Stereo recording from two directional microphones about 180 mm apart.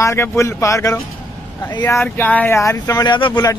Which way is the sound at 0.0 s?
15° left (ahead or behind).